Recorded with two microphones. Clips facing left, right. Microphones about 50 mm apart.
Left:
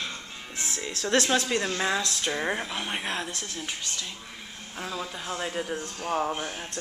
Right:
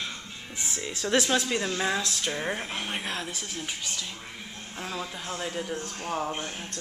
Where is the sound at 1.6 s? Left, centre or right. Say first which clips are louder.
Left 1 dB; centre.